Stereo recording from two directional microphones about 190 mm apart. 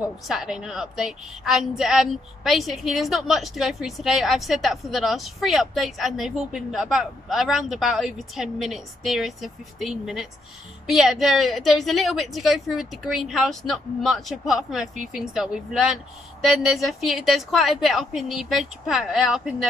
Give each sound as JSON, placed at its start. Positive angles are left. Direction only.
{"t": 0.3, "sound": "a woman's voice", "side_deg": 0}